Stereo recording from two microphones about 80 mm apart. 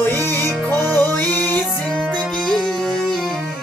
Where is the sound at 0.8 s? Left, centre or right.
Left.